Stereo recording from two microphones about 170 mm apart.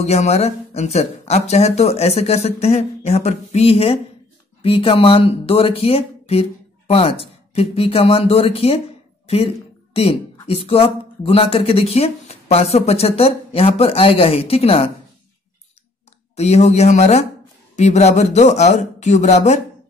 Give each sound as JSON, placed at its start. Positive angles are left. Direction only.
{"t": 0.0, "sound": "speech", "side_deg": 40}
{"t": 9.9, "sound": "speech", "side_deg": 35}
{"t": 16.3, "sound": "speech", "side_deg": 40}